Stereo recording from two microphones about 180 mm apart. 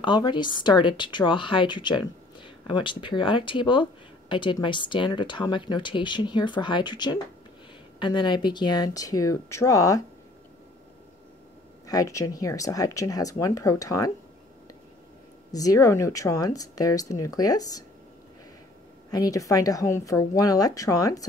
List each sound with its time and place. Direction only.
0.0 s a woman's voice: 25° left (ahead or behind)
11.8 s a woman's voice: 20° left (ahead or behind)
15.5 s a woman's voice: 20° left (ahead or behind)
19.0 s a woman's voice: 20° left (ahead or behind)